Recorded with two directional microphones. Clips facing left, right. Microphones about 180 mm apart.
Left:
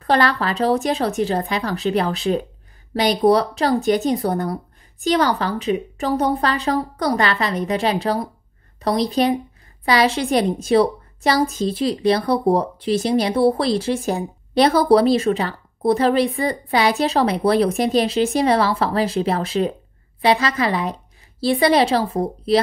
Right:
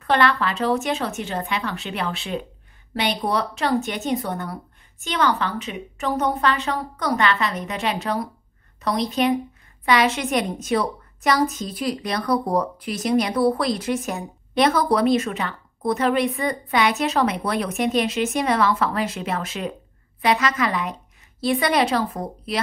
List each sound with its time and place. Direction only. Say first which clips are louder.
0.0 s a woman's voice: left 2 dB; 35° left (ahead or behind)